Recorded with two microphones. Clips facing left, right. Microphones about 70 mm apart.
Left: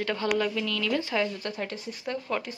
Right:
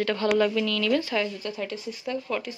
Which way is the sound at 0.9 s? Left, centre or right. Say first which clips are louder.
Right 1 dB; left.